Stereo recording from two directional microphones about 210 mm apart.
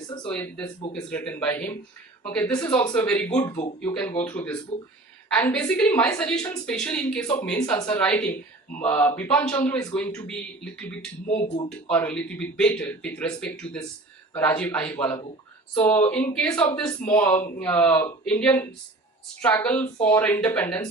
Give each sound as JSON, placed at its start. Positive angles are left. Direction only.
{"t": 0.2, "sound": "a man's voice", "side_deg": 5}
{"t": 3.4, "sound": "speech", "side_deg": 20}
{"t": 4.2, "sound": "a man's voice", "side_deg": 10}
{"t": 11.2, "sound": "speech", "side_deg": 25}
{"t": 11.9, "sound": "a man's voice", "side_deg": 10}